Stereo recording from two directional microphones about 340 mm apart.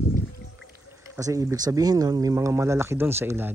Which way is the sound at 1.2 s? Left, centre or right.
Centre.